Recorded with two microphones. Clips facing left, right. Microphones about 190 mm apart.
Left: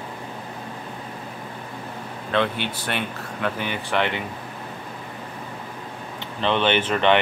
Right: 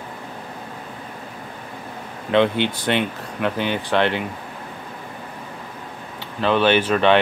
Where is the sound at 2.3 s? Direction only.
20° right (ahead or behind).